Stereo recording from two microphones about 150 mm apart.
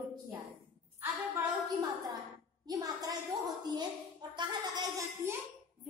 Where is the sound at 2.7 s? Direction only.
25° right (ahead or behind).